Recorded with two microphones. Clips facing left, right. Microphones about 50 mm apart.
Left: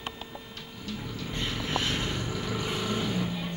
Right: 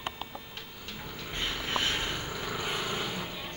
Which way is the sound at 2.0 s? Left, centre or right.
Centre.